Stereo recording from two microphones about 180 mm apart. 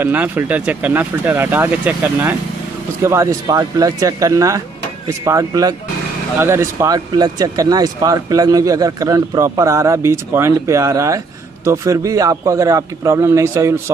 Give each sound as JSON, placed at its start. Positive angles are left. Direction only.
{"t": 0.0, "sound": "speech", "side_deg": -10}